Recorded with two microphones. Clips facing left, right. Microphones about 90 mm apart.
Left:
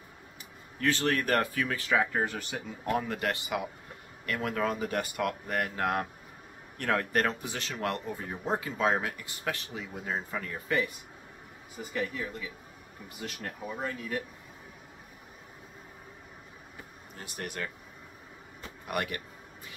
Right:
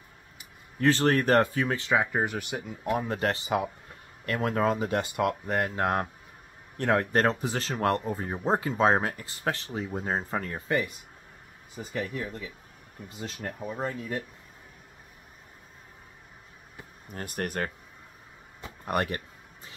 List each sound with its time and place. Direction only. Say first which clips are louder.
0.7 s speech: right 5 dB; 35° right (ahead or behind); by 3.1 s 15° right (ahead or behind)
3.1 s speech: right 4 dB; 30° right (ahead or behind)
13.1 s speech: right 3 dB; 25° right (ahead or behind)
17.1 s speech: right 7 dB; 50° right (ahead or behind)
18.9 s a sound: right 5 dB; 35° right (ahead or behind)